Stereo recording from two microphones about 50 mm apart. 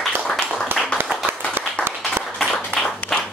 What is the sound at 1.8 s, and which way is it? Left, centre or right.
Applause, left.